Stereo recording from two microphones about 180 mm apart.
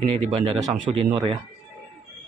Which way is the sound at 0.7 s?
25° right (ahead or behind).